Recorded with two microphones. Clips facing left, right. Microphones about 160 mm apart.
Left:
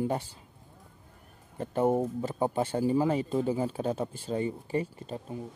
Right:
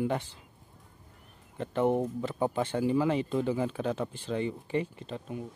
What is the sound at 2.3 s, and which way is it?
Speech, 35° left (ahead or behind).